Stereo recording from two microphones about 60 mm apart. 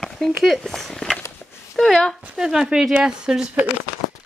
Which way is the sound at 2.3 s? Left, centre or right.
Centre.